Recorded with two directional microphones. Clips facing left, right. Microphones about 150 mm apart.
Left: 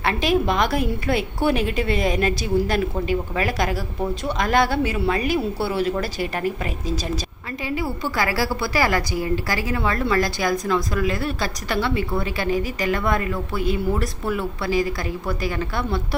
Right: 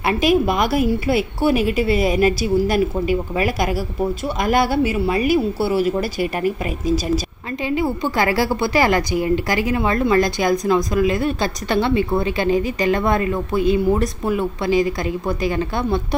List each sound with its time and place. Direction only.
0.0 s a woman's voice: 10° right (ahead or behind)
7.7 s a woman's voice: 20° right (ahead or behind)